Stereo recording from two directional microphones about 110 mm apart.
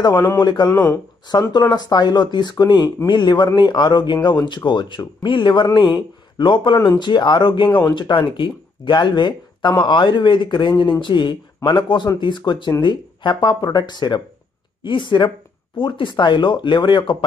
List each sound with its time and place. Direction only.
0.4 s speech: 40° left (ahead or behind)
0.7 s speech: 20° left (ahead or behind)
1.5 s speech: 35° left (ahead or behind)